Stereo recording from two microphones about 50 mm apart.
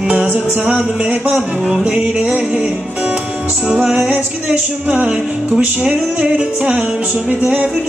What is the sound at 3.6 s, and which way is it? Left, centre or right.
Music, centre.